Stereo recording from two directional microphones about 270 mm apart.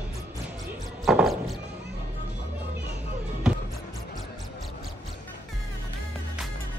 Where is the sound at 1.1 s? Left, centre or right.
Centre.